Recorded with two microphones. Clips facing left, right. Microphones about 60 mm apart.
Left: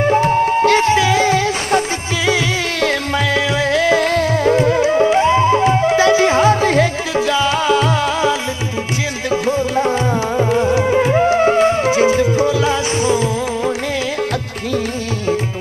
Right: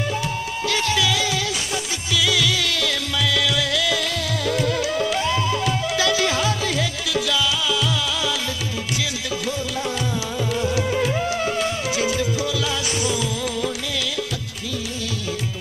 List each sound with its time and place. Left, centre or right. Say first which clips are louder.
0.0 s music: left 12 dB; left